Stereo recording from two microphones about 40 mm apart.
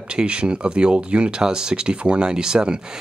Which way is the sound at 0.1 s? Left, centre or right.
Right.